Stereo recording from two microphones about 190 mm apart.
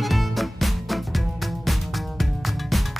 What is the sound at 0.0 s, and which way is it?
Music, centre (ahead or behind).